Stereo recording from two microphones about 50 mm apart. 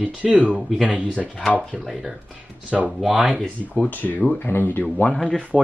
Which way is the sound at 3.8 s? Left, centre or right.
Left.